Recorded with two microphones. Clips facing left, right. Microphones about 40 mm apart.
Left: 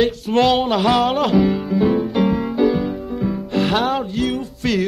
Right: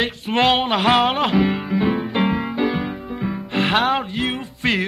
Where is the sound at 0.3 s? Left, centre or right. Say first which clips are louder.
Left 1 dB; right.